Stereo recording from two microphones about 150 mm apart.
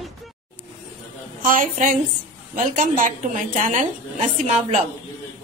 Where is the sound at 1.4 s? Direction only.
65° right (ahead or behind).